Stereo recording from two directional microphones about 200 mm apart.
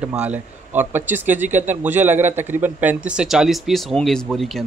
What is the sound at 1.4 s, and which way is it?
Speech, 35° right (ahead or behind).